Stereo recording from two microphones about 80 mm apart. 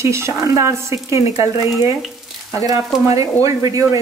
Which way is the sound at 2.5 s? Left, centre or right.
Right.